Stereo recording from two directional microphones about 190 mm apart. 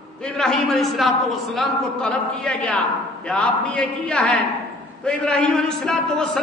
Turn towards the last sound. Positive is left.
turn(degrees=5)  # may be behind; listen again after turning